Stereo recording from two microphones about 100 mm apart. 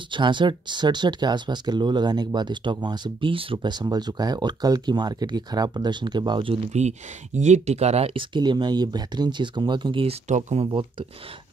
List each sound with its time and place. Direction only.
0.1 s speech: 50° right (ahead or behind)
3.5 s speech: 45° right (ahead or behind)
7.6 s speech: 90° right; by 10.0 s 50° right (ahead or behind)
10.0 s speech: 90° right
10.7 s speech: 55° right (ahead or behind)